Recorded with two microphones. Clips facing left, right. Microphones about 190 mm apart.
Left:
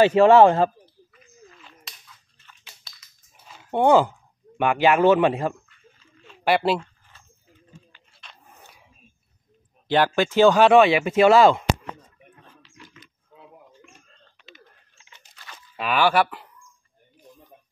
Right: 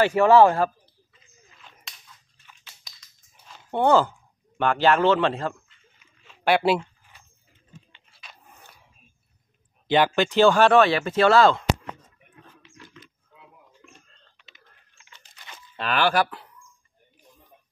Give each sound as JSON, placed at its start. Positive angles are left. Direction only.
{"t": 0.0, "sound": "speech", "side_deg": 25}
{"t": 1.6, "sound": "a sound", "side_deg": 0}
{"t": 3.0, "sound": "dog", "side_deg": 5}
{"t": 3.8, "sound": "speech", "side_deg": 15}
{"t": 6.2, "sound": "speech", "side_deg": 0}
{"t": 8.1, "sound": "dog", "side_deg": -5}
{"t": 9.8, "sound": "speech", "side_deg": 5}
{"t": 15.3, "sound": "crunch", "side_deg": -15}
{"t": 15.7, "sound": "speech", "side_deg": 5}